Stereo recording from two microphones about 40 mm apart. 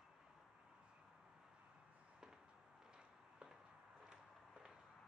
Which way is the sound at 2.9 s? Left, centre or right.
Right.